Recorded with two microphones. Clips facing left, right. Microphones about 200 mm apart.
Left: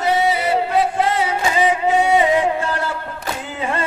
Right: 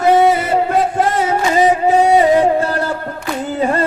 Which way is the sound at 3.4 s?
40° right (ahead or behind).